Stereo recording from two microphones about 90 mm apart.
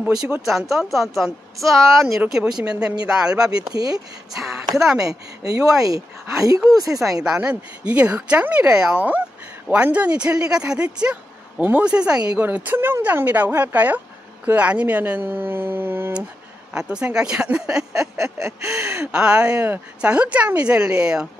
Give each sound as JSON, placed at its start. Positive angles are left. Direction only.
{"t": 0.3, "sound": "a woman's voice", "side_deg": 0}
{"t": 3.7, "sound": "speech", "side_deg": -45}
{"t": 4.4, "sound": "a woman's voice", "side_deg": -5}
{"t": 5.4, "sound": "speech", "side_deg": -40}
{"t": 7.2, "sound": "a woman's voice", "side_deg": -10}
{"t": 16.7, "sound": "speech", "side_deg": -10}